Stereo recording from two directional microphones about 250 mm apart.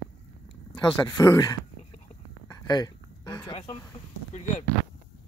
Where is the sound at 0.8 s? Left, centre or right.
Centre.